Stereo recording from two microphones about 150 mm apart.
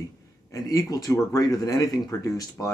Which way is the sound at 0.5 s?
25° left (ahead or behind).